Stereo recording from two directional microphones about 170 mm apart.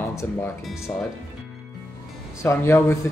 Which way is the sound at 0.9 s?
25° left (ahead or behind).